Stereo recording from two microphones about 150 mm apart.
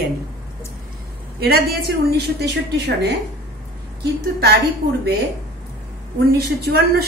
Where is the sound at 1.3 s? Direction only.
90° right.